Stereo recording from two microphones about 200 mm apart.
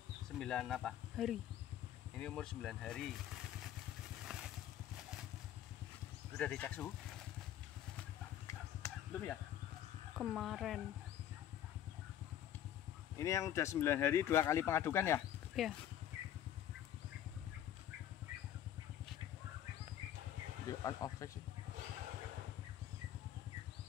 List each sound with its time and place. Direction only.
0.4 s speech: 5° left (ahead or behind)
4.3 s vehicle: 5° right (ahead or behind)
6.3 s speech: 5° left (ahead or behind)
8.5 s a sound: 10° left (ahead or behind)
10.1 s speech: centre (ahead or behind)
13.2 s speech: 15° left (ahead or behind)
15.6 s speech: centre (ahead or behind)
20.8 s speech: 15° left (ahead or behind)